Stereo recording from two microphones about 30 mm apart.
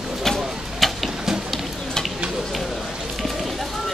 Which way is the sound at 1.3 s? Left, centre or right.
Centre.